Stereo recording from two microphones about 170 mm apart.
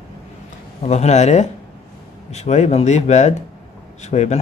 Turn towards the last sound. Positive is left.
turn(degrees=40)  # may be behind; listen again after turning